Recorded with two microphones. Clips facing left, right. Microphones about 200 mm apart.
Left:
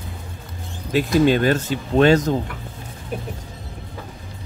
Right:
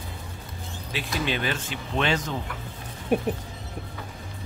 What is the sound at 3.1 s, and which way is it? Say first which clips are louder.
Music: right 6 dB; 65° right (ahead or behind).